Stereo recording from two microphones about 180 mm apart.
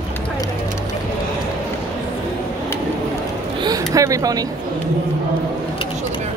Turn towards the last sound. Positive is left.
turn(degrees=-20)  # may be behind; listen again after turning